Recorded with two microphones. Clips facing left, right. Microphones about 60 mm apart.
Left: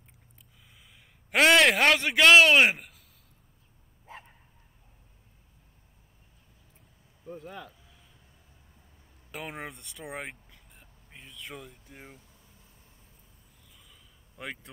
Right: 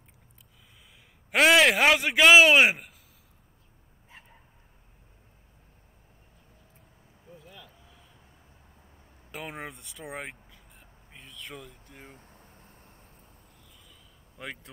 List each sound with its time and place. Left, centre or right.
1.3 s a man's voice: centre
7.2 s speech: left
9.3 s vehicle: centre
12.1 s vehicle: right
14.3 s speech: centre